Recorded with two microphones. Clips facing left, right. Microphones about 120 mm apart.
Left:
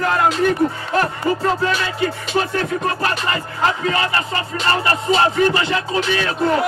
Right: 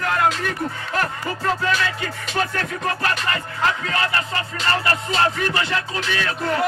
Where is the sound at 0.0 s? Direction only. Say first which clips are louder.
Left 4 dB; 25° left (ahead or behind).